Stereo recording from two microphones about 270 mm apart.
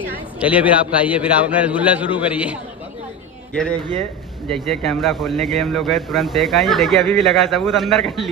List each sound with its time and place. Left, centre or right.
0.4 s a man's voice: centre